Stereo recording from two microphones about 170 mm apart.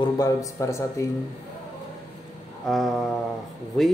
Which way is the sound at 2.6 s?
Centre (ahead or behind).